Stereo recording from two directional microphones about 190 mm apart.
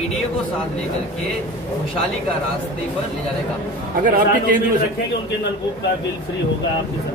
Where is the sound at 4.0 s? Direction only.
45° right (ahead or behind).